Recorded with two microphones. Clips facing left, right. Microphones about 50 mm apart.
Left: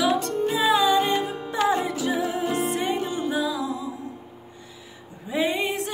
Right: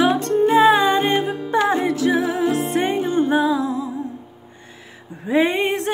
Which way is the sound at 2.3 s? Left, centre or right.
Right.